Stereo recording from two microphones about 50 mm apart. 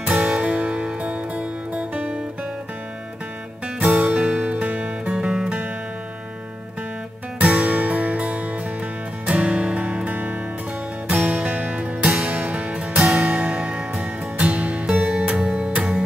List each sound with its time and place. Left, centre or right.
0.0 s music: right
3.6 s music: right
7.3 s music: right
14.9 s music: centre